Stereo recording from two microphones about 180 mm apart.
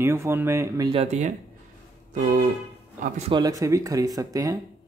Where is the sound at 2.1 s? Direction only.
50° right (ahead or behind).